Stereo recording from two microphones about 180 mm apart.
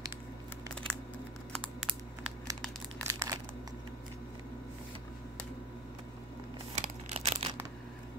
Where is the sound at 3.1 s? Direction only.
15° right (ahead or behind).